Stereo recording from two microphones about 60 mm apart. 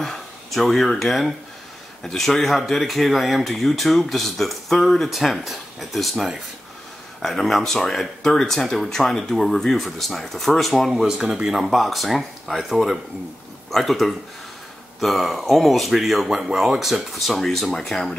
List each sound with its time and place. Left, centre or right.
0.0 s speech: centre
10.9 s speech: centre
11.2 s speech: right
11.5 s speech: centre